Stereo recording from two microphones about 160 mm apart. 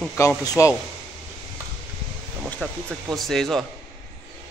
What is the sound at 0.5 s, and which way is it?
Speech, 20° left (ahead or behind).